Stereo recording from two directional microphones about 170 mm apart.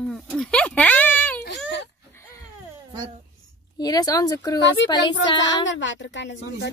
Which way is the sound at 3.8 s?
20° left (ahead or behind).